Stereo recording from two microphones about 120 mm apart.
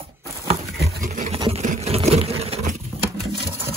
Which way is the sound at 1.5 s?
70° right (ahead or behind).